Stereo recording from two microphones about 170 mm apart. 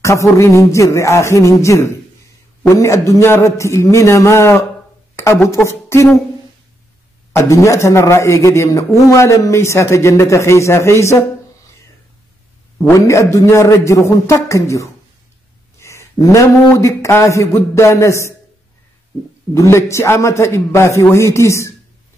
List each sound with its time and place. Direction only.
0.0 s a man's voice: 20° left (ahead or behind)
7.3 s a man's voice: 15° left (ahead or behind)
12.7 s a man's voice: 15° left (ahead or behind)
15.8 s a sound: 15° left (ahead or behind)
16.7 s a man's voice: 15° left (ahead or behind)
19.5 s a man's voice: 15° left (ahead or behind)